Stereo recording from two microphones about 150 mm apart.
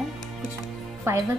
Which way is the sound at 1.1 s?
20° right (ahead or behind).